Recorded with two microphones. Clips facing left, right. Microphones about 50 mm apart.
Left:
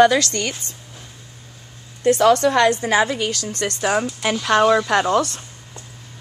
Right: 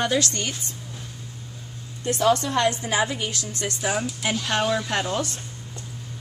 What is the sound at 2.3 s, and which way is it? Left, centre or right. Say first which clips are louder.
A woman's voice: left 7 dB; left.